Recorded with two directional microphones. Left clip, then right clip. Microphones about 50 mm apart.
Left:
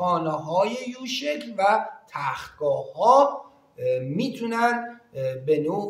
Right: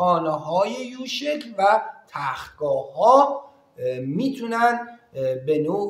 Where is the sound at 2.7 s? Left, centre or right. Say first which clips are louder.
Right 2 dB; right.